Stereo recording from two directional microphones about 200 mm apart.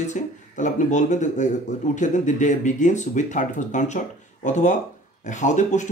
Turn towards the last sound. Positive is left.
turn(degrees=35)  # may be behind; listen again after turning